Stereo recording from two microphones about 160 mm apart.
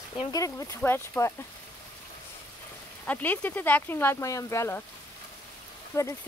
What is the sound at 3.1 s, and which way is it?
Speech, 10° left (ahead or behind).